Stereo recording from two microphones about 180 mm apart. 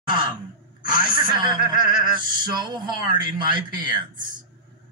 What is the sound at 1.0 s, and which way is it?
A woman's voice, 25° right (ahead or behind).